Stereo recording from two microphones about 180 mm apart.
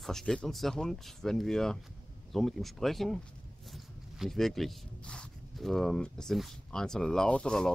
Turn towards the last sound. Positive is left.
turn(degrees=5)  # may be behind; listen again after turning